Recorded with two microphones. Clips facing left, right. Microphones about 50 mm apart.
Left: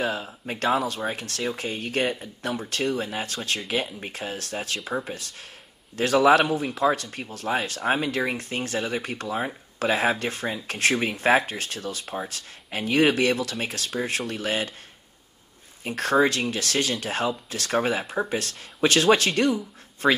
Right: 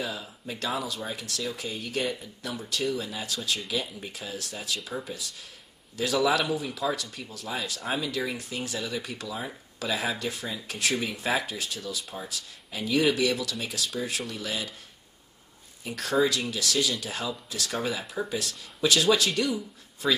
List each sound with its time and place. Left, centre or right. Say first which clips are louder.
0.0 s speech: left 7 dB; left
15.8 s speech: left 4 dB; left